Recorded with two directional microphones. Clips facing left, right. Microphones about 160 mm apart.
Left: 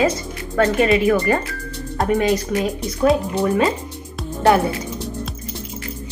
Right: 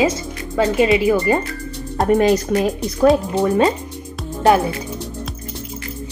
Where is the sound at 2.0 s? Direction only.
45° right (ahead or behind).